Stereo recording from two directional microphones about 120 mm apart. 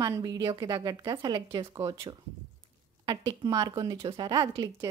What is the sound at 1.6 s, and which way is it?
Speech, 25° right (ahead or behind).